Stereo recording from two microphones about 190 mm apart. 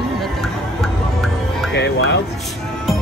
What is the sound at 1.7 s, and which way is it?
Music, 65° left (ahead or behind).